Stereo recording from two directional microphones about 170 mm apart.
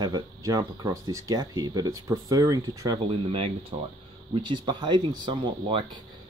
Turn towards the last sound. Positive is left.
turn(degrees=-25)  # may be behind; listen again after turning